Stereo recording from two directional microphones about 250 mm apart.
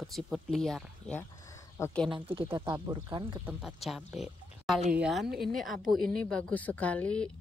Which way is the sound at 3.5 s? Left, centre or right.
Centre.